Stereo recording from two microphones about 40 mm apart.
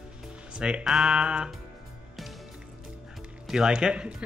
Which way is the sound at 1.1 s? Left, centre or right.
Right.